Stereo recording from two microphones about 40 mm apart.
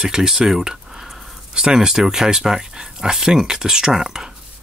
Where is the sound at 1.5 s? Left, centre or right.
Centre.